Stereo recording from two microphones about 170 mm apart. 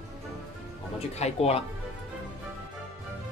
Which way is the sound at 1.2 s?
35° left (ahead or behind).